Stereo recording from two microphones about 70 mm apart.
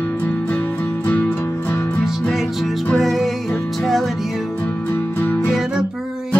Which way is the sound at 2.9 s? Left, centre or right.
Centre.